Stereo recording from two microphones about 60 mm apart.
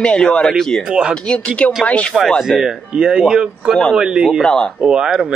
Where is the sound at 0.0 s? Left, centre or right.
Centre.